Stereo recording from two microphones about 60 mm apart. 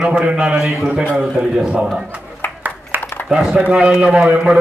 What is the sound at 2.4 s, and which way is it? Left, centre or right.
Clapping, left.